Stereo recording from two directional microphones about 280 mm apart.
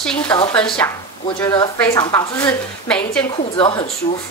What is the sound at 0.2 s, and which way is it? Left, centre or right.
A woman's voice, centre.